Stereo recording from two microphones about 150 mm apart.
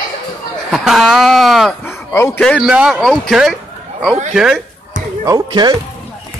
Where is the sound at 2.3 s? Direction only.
5° left (ahead or behind).